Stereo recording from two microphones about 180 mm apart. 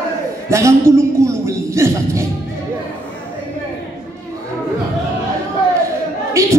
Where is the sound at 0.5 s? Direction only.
15° right (ahead or behind).